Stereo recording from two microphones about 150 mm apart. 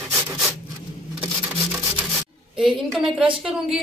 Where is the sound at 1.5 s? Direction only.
5° right (ahead or behind).